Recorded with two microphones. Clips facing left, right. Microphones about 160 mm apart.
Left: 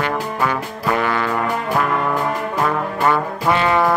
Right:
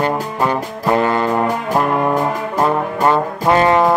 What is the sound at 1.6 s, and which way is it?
Music, 35° right (ahead or behind).